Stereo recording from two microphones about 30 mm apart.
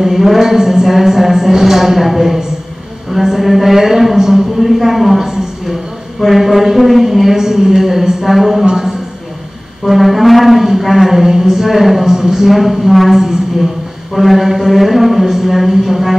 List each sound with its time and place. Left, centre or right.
0.0 s a woman's voice: centre
4.2 s speech: centre
4.6 s a sound: centre
6.2 s a woman's voice: centre
8.6 s a man's voice: centre
9.8 s a woman's voice: centre
12.1 s a woman's voice: centre
14.1 s a sound: centre
15.3 s a woman's voice: centre